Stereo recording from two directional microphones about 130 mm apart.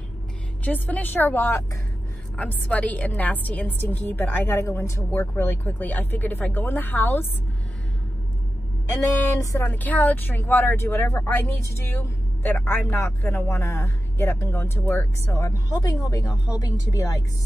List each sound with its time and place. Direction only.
0.7 s a woman's voice: 10° left (ahead or behind)
9.0 s speech: 25° left (ahead or behind)